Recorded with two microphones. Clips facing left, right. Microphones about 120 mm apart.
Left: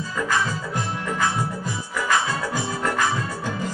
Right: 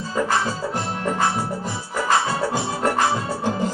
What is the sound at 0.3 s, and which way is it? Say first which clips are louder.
Music: right 2 dB; 30° right (ahead or behind).